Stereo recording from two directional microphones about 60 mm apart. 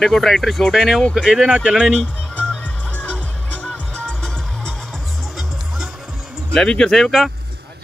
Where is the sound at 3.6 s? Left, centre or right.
Centre.